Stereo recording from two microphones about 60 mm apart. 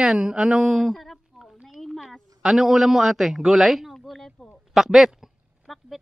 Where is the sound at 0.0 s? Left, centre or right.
Centre.